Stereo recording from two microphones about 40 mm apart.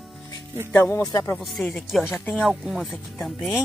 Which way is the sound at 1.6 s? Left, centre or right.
Centre.